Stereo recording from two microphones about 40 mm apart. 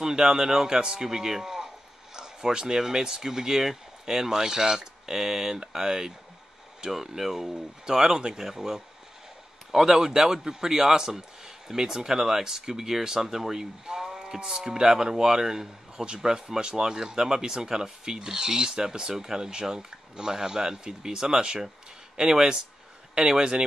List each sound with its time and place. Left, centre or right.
0.0 s speech: centre
7.5 s speech: centre
23.1 s speech: right